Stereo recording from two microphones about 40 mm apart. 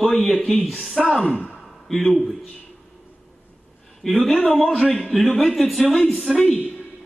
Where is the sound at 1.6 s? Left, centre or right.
Centre.